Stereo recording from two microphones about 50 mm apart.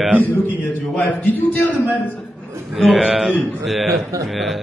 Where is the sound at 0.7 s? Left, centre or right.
Left.